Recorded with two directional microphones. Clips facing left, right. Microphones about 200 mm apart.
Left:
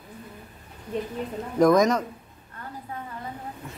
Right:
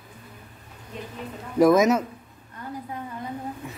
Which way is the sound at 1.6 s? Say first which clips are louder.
Right 1 dB; 5° right (ahead or behind).